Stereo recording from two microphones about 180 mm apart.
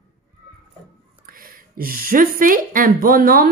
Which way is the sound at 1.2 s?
55° right (ahead or behind).